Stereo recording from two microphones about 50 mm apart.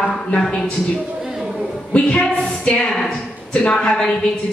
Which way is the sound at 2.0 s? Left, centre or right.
Left.